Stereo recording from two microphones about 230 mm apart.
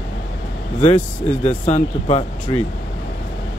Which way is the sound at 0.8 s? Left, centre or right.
Left.